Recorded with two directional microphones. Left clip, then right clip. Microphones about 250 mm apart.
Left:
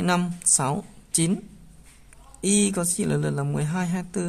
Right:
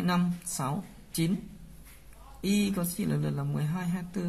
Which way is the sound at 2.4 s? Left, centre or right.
Left.